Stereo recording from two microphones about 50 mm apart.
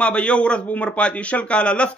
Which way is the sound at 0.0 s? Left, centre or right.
Left.